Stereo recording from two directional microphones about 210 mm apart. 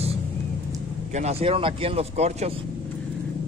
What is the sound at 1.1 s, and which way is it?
Speech, 30° right (ahead or behind).